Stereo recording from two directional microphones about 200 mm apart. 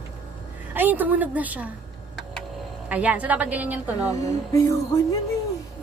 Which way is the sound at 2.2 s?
Centre (ahead or behind).